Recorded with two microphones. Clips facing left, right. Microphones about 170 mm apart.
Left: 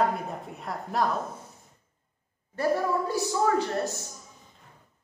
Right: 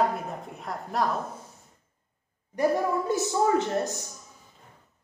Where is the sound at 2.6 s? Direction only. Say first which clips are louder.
Right 1 dB; 15° right (ahead or behind).